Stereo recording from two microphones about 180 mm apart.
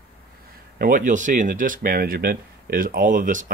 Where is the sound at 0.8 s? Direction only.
45° right (ahead or behind).